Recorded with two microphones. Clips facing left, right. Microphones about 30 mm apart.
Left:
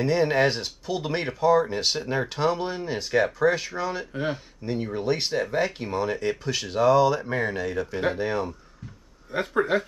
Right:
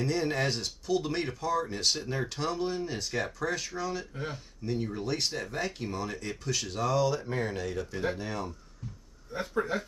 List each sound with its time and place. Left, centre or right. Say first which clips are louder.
0.0 s speech: left 8 dB; left
8.2 s speech: left 9 dB; left
9.3 s speech: left 7 dB; left